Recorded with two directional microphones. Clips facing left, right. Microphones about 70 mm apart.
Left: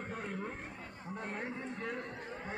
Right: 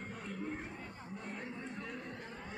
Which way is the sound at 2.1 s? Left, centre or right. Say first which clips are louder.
Left 3 dB; left.